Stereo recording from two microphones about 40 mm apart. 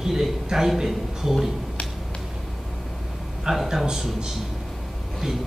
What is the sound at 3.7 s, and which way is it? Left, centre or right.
Speech, centre.